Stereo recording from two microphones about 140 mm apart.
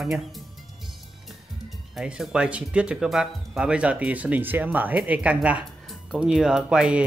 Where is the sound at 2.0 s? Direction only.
5° right (ahead or behind).